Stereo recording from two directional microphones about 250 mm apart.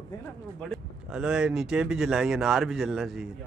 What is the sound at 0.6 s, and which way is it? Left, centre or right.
Speech, centre.